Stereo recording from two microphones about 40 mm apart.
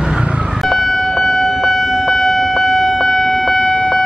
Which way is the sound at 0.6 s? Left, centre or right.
Centre.